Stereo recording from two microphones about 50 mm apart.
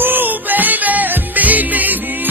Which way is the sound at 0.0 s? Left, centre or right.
Right.